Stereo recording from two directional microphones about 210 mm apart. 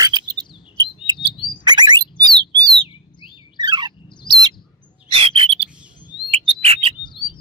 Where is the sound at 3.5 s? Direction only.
20° right (ahead or behind).